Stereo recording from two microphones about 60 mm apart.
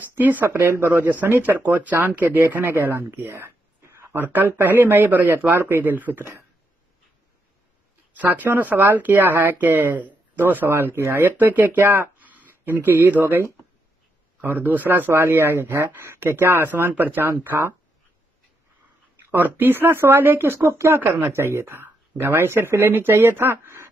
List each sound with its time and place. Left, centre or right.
0.1 s speech: right
0.6 s speech: right
8.2 s speech: right
10.9 s speech: right
14.4 s speech: right
19.3 s speech: right